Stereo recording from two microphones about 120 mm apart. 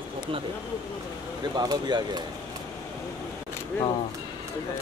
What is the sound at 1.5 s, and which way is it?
Speech, 35° right (ahead or behind).